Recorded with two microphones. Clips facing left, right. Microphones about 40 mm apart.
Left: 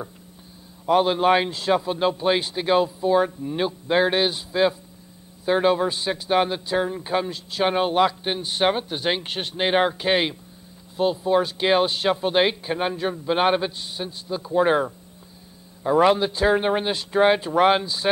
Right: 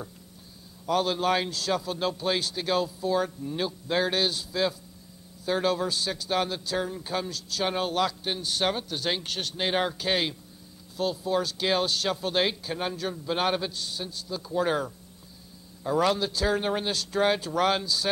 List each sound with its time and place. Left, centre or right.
0.8 s a man's voice: left